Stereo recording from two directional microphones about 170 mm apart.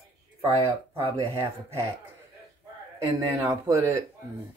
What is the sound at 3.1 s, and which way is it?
Speech, 20° right (ahead or behind).